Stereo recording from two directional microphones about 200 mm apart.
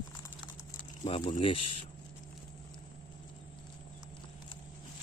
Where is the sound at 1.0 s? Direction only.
25° left (ahead or behind).